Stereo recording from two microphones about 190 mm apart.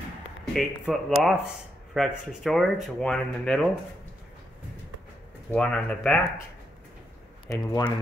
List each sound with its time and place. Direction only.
0.5 s speech: centre (ahead or behind)
5.5 s speech: 5° left (ahead or behind)
7.4 s speech: 20° left (ahead or behind)